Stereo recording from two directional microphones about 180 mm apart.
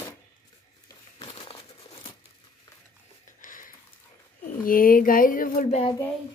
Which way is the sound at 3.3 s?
45° left (ahead or behind).